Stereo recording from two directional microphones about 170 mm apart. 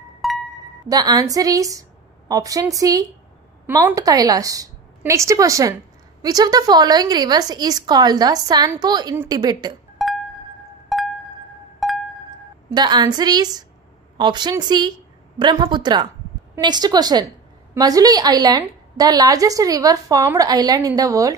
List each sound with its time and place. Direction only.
0.2 s music: centre (ahead or behind)
0.8 s a woman's voice: 20° right (ahead or behind)
9.1 s a woman's voice: 15° right (ahead or behind)
9.4 s a woman's voice: 25° right (ahead or behind)
10.0 s music: centre (ahead or behind)
12.7 s a woman's voice: 25° right (ahead or behind)